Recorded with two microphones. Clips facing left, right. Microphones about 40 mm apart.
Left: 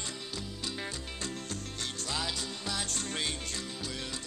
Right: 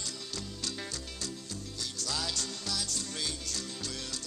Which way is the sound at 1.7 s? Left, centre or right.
Left.